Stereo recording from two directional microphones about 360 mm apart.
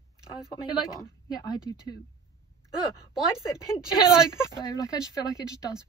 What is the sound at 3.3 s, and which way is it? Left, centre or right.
Speech, centre.